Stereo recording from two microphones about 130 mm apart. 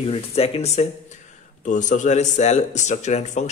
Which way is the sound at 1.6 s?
70° left (ahead or behind).